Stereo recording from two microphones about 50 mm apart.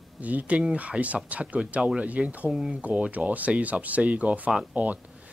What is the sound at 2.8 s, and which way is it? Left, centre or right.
Speech, right.